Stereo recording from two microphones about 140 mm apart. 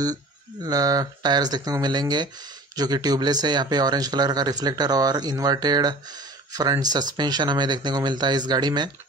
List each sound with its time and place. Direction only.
0.7 s speech: 25° right (ahead or behind)